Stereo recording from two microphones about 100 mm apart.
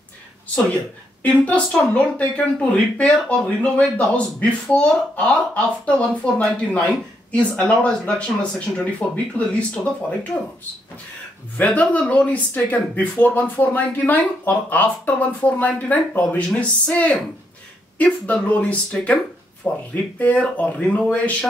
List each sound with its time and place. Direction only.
1.4 s speech: 15° left (ahead or behind)
11.5 s speech: 15° left (ahead or behind)